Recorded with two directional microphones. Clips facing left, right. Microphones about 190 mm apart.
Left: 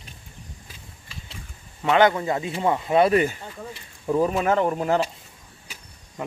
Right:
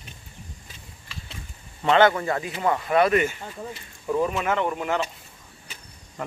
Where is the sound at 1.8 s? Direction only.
15° left (ahead or behind); by 5.1 s 35° left (ahead or behind).